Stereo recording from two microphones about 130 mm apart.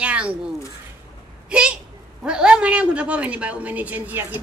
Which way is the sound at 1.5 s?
5° right (ahead or behind).